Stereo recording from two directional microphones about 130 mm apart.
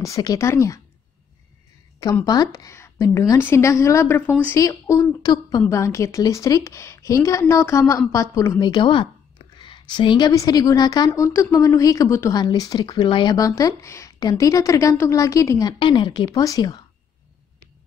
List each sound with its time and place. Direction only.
0.0 s a woman's voice: 25° left (ahead or behind)
2.2 s a woman's voice: 30° left (ahead or behind)
11.1 s a woman's voice: 20° left (ahead or behind)
15.8 s a woman's voice: 40° left (ahead or behind)